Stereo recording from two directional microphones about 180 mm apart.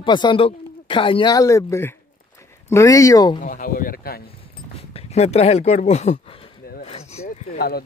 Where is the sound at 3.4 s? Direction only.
50° left (ahead or behind).